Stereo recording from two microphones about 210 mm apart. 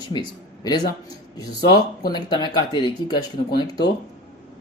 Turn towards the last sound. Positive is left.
turn(degrees=20)  # may be behind; listen again after turning